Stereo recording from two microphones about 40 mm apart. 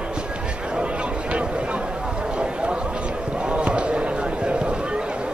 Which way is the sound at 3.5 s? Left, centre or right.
Right.